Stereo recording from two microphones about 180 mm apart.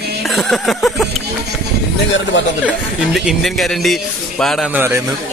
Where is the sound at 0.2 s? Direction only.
Centre (ahead or behind).